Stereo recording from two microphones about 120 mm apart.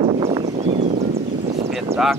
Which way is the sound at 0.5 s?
80° right.